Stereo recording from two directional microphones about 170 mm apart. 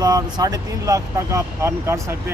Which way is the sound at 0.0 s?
20° right (ahead or behind).